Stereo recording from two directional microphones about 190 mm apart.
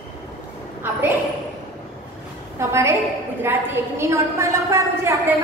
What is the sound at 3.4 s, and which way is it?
A woman's voice, 10° right (ahead or behind).